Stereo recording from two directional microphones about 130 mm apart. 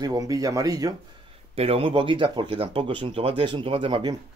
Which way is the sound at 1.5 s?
50° right (ahead or behind).